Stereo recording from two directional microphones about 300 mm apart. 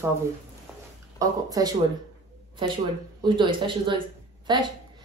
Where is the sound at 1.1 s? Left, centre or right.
Centre.